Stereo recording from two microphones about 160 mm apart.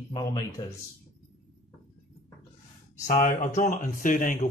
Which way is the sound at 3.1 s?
55° left (ahead or behind).